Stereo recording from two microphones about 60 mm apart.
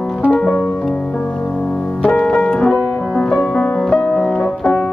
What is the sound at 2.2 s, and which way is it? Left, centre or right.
Music, centre.